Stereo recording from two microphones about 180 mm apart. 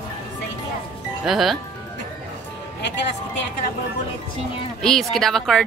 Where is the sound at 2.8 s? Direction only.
70° left (ahead or behind).